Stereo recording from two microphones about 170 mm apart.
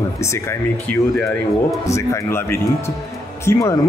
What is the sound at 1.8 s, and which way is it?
Speech, 15° left (ahead or behind).